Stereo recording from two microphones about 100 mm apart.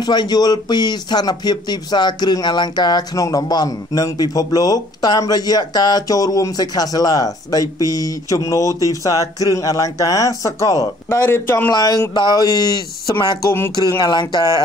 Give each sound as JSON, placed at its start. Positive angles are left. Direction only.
{"t": 0.0, "sound": "speech", "side_deg": 45}
{"t": 11.7, "sound": "speech", "side_deg": 40}